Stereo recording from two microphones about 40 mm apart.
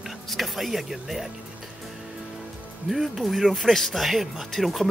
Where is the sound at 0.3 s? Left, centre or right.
Centre.